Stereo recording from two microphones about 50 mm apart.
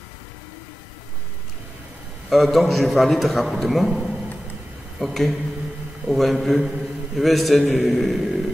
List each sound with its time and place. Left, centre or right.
2.2 s a man's voice: centre